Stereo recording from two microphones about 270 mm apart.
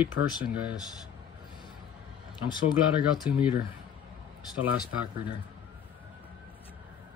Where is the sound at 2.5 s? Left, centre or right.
Centre.